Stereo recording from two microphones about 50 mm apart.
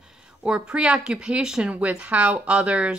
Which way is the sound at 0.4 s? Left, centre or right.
Centre.